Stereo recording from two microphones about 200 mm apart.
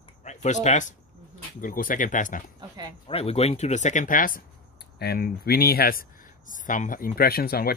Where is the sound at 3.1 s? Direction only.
30° left (ahead or behind).